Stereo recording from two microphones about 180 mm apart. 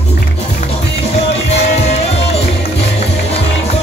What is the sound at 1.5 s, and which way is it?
Music, 35° left (ahead or behind).